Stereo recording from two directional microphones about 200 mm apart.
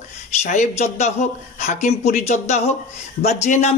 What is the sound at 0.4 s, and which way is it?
A man's voice, 35° left (ahead or behind).